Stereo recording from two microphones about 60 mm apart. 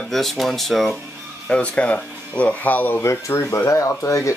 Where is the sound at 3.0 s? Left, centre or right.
Left.